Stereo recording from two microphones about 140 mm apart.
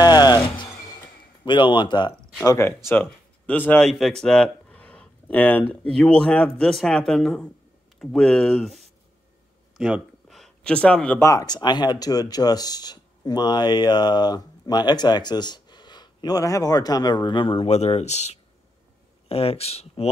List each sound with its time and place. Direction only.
0.0 s music: 30° left (ahead or behind)
1.4 s speech: 35° left (ahead or behind)
2.4 s speech: 20° left (ahead or behind)
11.2 s speech: 25° left (ahead or behind); by 20.1 s 45° left (ahead or behind)